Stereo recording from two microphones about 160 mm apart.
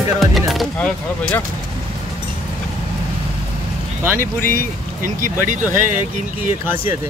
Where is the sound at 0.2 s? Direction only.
Centre (ahead or behind).